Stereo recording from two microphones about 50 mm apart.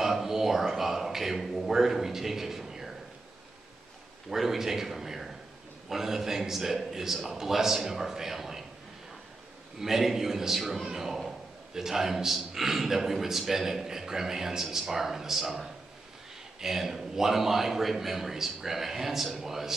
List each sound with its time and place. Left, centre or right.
0.0 s speech: centre
4.3 s a man's voice: centre
9.8 s a man's voice: centre